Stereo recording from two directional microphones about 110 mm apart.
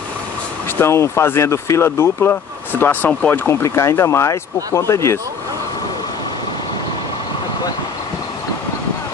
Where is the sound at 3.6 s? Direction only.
25° left (ahead or behind).